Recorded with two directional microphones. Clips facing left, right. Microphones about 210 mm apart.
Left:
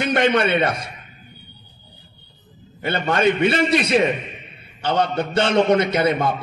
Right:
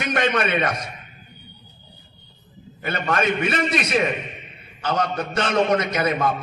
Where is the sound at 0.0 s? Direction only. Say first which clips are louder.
Left 4 dB; 30° left (ahead or behind).